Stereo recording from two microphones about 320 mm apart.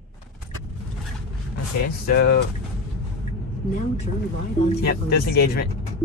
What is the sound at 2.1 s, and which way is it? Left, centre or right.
Speech, left.